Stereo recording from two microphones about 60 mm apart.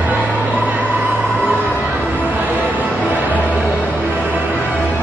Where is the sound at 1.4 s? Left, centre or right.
Right.